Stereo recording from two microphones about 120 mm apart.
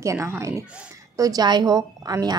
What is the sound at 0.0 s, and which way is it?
A woman's voice, 25° right (ahead or behind).